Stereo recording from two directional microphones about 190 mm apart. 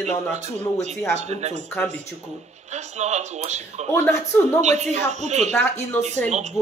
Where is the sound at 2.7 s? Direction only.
35° right (ahead or behind).